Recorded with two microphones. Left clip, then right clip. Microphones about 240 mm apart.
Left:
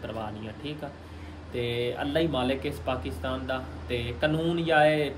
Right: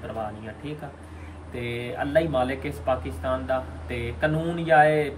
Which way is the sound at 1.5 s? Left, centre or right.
Centre.